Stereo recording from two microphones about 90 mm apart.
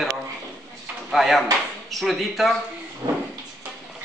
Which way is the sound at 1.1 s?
Centre (ahead or behind).